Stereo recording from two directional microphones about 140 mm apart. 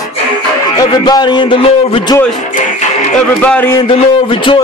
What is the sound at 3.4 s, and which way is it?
Speech, 10° left (ahead or behind).